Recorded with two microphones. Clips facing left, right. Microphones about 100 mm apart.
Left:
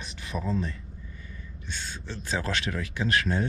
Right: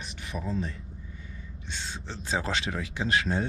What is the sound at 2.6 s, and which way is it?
Speech, 30° right (ahead or behind).